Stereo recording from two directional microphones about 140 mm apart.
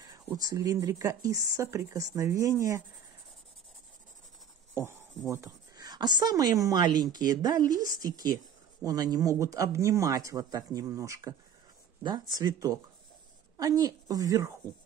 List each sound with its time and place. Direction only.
0.4 s a woman's voice: 25° right (ahead or behind)
5.3 s a woman's voice: 25° right (ahead or behind)